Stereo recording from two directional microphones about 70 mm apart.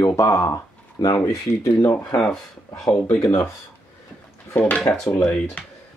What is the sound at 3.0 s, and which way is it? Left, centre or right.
Speech, left.